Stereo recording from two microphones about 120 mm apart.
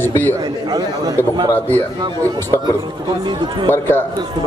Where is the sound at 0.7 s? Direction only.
35° right (ahead or behind).